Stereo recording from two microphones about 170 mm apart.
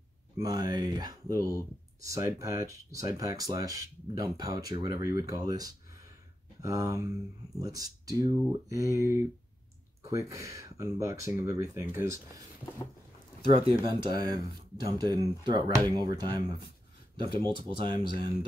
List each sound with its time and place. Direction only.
0.4 s speech: 20° right (ahead or behind)
13.5 s speech: 30° right (ahead or behind)